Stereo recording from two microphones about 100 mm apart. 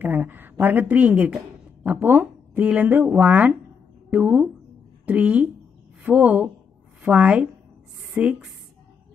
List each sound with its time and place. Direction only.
0.0 s a woman's voice: 20° right (ahead or behind)